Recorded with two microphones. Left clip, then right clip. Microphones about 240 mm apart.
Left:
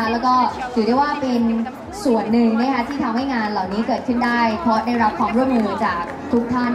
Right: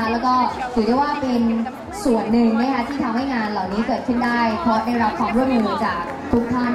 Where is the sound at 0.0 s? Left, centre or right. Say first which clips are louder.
Left 1 dB; centre.